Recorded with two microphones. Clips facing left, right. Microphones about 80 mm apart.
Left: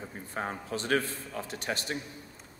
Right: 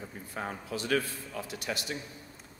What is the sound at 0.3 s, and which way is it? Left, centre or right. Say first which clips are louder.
A man's voice: left 2 dB; left.